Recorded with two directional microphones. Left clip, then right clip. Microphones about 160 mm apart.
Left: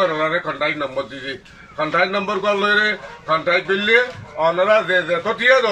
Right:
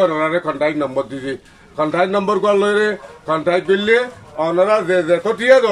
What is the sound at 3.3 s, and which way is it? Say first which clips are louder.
A man's voice: right 2 dB; 30° right (ahead or behind).